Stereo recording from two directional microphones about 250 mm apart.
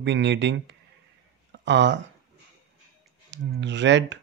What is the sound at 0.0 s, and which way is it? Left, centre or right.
Speech, right.